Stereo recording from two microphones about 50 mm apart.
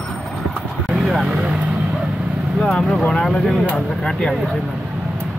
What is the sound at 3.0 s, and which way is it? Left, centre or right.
Speech, centre.